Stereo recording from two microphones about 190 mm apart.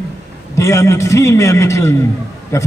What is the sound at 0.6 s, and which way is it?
A man's voice, 15° left (ahead or behind).